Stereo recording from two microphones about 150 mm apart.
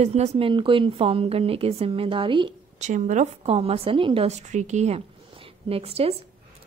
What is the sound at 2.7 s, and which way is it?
A woman's voice, 55° right (ahead or behind).